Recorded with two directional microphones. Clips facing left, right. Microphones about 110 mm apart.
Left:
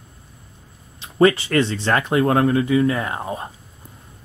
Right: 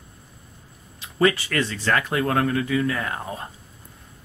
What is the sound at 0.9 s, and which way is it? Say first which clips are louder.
Speech: left 5 dB; 30° left (ahead or behind).